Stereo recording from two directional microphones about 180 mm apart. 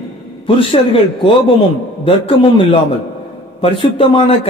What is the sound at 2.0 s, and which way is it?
A man's voice, 30° left (ahead or behind).